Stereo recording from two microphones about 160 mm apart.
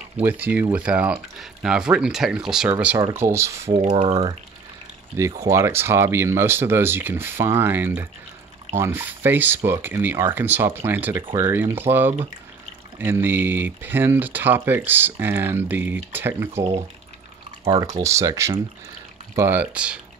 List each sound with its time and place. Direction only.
0.2 s speech: 10° right (ahead or behind)
3.9 s speech: 35° right (ahead or behind)
5.4 s speech: 20° right (ahead or behind)
13.0 s speech: 15° right (ahead or behind)
18.0 s speech: 20° right (ahead or behind)